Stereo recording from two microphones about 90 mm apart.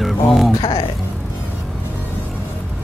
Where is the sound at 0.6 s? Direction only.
50° left (ahead or behind).